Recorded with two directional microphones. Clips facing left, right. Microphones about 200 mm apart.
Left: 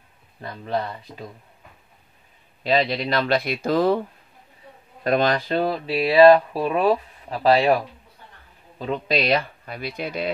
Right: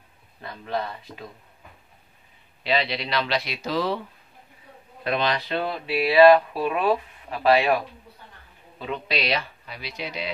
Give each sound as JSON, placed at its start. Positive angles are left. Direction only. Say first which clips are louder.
{"t": 0.4, "sound": "speech", "louder": "left 3 dB", "side_deg": 35}
{"t": 2.6, "sound": "speech", "louder": "left 4 dB", "side_deg": 45}
{"t": 5.0, "sound": "speech", "louder": "left 5 dB", "side_deg": 45}
{"t": 8.7, "sound": "speech", "louder": "left 5 dB", "side_deg": 40}